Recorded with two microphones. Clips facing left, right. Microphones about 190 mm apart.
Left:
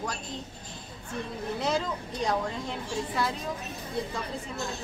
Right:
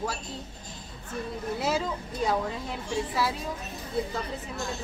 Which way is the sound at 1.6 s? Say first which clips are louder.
Even; 5° right (ahead or behind).